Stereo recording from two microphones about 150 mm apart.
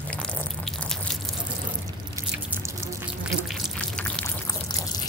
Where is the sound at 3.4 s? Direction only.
Centre (ahead or behind).